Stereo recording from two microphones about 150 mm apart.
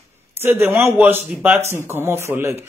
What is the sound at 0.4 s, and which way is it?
Speech, 15° right (ahead or behind).